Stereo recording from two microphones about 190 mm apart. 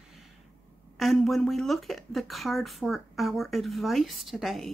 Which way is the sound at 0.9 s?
Centre (ahead or behind).